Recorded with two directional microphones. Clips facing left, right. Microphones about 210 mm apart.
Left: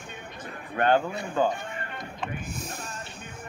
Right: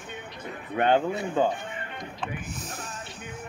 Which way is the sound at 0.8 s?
20° right (ahead or behind).